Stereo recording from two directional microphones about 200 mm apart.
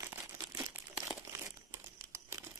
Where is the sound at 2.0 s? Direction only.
15° right (ahead or behind).